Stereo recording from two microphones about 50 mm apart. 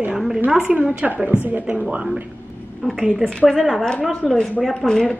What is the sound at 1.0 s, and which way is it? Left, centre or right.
Speech, right.